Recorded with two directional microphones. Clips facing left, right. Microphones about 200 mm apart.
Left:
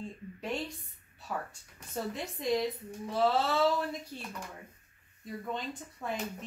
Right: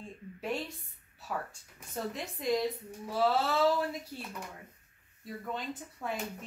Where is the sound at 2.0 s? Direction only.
Centre (ahead or behind).